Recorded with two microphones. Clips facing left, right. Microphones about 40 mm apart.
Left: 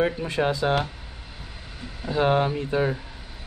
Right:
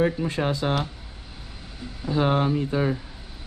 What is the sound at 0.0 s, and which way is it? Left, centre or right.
Speech, left.